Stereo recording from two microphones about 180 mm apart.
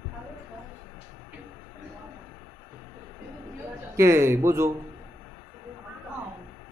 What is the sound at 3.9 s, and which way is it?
Speech, 15° right (ahead or behind).